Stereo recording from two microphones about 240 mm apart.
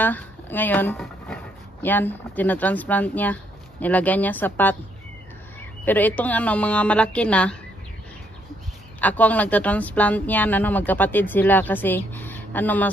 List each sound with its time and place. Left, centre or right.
0.0 s speech: centre
5.9 s speech: centre
9.0 s speech: centre